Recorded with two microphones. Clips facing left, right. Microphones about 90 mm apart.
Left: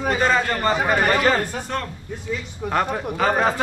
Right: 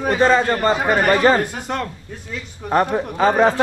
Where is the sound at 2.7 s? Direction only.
30° right (ahead or behind).